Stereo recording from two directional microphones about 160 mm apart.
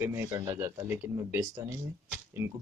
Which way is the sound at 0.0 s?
15° right (ahead or behind).